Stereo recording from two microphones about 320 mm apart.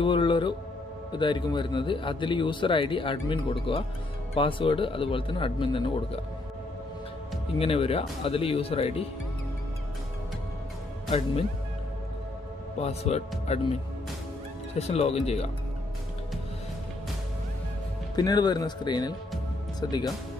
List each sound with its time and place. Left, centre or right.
0.0 s speech: centre
7.5 s speech: centre
11.1 s speech: centre
12.8 s speech: centre
14.8 s speech: centre
18.1 s speech: centre